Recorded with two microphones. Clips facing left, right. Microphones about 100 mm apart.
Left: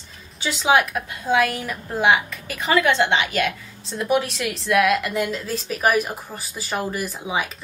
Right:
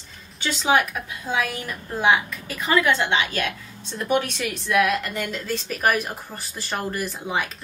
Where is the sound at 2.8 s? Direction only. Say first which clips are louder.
Left 2 dB; 20° left (ahead or behind).